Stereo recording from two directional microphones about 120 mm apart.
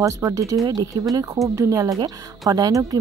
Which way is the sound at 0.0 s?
30° right (ahead or behind).